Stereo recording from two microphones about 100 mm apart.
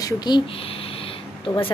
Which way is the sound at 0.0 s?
45° left (ahead or behind).